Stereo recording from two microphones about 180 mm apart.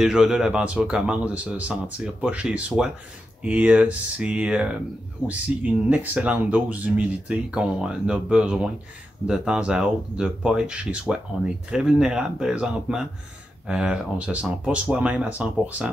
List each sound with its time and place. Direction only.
0.0 s speech: 5° right (ahead or behind)